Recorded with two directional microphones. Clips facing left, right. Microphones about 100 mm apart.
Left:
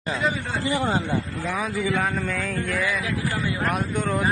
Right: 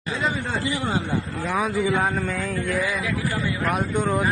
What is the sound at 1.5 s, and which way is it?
A man's voice, 20° right (ahead or behind).